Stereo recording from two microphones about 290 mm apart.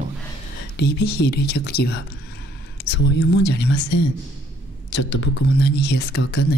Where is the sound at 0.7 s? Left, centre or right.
Left.